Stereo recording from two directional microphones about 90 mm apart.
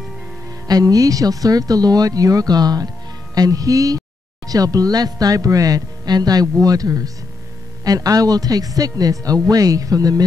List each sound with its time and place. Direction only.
0.7 s speech: 45° right (ahead or behind)